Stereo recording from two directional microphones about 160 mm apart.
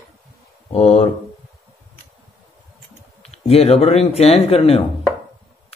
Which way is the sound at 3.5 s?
40° left (ahead or behind).